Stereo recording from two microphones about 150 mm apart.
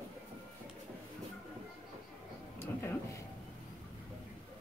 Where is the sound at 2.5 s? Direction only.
15° left (ahead or behind).